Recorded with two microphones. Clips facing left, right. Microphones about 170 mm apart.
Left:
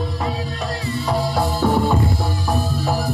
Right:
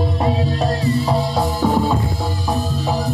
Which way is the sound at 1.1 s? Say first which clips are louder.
Right 1 dB; 20° right (ahead or behind).